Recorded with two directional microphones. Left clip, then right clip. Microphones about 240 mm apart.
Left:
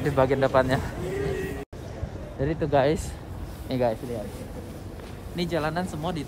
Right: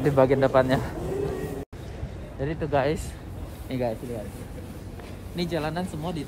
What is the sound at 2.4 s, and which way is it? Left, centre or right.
Speech, left.